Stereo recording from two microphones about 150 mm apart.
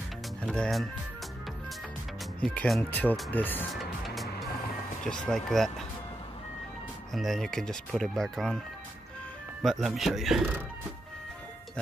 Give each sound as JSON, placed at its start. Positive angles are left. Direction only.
{"t": 0.4, "sound": "speech", "side_deg": 5}
{"t": 2.4, "sound": "speech", "side_deg": 5}
{"t": 3.7, "sound": "music", "side_deg": 0}
{"t": 5.0, "sound": "speech", "side_deg": 5}
{"t": 7.2, "sound": "speech", "side_deg": 0}
{"t": 9.6, "sound": "speech", "side_deg": 0}